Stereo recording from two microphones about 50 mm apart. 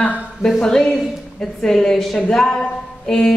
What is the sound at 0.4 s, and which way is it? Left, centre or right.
A woman's voice, centre.